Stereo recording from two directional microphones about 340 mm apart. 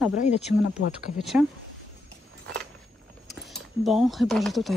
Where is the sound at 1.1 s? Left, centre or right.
Centre.